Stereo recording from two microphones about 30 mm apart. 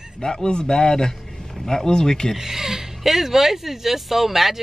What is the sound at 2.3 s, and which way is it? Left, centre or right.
Speech, centre.